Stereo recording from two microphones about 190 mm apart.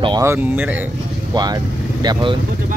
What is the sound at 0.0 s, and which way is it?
Speech, 20° right (ahead or behind).